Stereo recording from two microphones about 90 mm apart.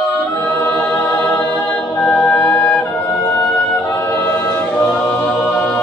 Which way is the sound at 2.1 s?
20° left (ahead or behind).